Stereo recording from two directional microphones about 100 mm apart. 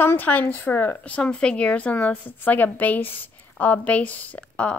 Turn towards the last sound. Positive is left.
turn(degrees=10)  # may be behind; listen again after turning